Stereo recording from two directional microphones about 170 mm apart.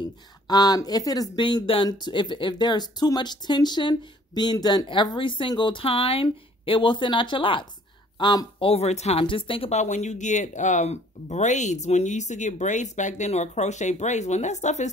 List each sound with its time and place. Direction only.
0.5 s speech: 25° left (ahead or behind); by 14.9 s 45° left (ahead or behind)